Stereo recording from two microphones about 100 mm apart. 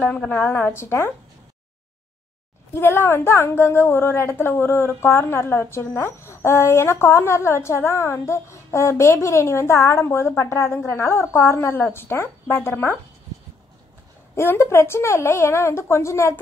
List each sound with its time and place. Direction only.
0.0 s a woman's voice: 15° left (ahead or behind)
2.7 s a woman's voice: 20° left (ahead or behind)
14.3 s a woman's voice: 25° left (ahead or behind)